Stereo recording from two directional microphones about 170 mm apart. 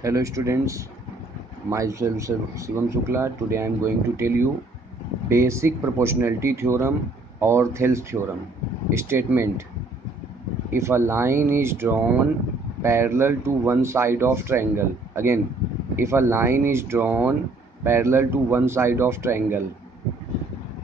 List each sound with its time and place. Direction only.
0.0 s speech: 20° right (ahead or behind)
10.7 s speech: 15° right (ahead or behind)